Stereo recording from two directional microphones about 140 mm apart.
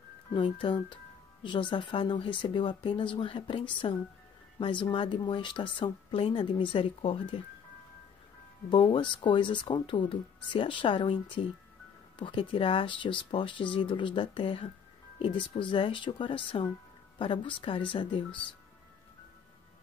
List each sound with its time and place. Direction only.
0.3 s speech: 35° left (ahead or behind)
8.6 s speech: 35° left (ahead or behind)